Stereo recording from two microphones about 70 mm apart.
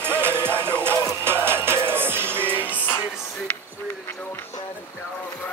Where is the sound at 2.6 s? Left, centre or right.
Left.